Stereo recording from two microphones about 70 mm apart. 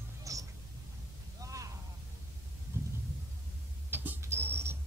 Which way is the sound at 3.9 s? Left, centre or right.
Right.